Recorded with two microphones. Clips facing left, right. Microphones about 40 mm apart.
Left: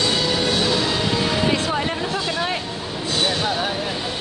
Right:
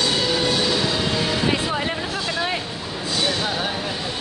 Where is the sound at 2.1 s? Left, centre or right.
Centre.